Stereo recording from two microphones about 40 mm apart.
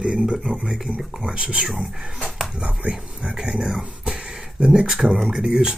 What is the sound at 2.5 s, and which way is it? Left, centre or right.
Speech, right.